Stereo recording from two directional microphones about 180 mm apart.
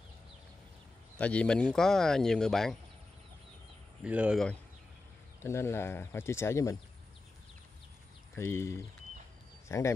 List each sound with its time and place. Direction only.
1.1 s speech: 5° left (ahead or behind)
4.0 s speech: 5° right (ahead or behind)
5.4 s speech: 15° left (ahead or behind)
8.4 s speech: 15° left (ahead or behind)